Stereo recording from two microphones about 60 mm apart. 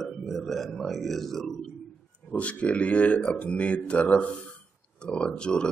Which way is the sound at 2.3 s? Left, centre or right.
Left.